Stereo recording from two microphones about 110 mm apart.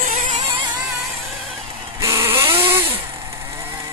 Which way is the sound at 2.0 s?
25° right (ahead or behind).